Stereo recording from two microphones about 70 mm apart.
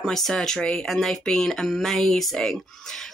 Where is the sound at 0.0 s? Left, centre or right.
Centre.